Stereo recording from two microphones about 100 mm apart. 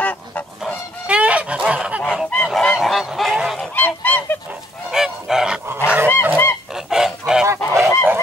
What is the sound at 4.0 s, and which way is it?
Goose, 20° left (ahead or behind).